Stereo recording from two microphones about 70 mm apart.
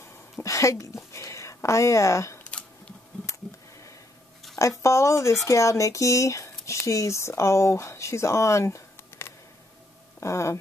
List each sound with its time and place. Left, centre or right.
0.0 s speech: left
4.6 s speech: left